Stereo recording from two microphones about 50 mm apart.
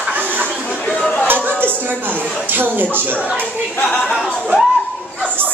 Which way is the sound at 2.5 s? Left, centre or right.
Right.